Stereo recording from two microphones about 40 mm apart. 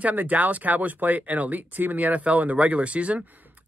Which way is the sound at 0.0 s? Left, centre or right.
Right.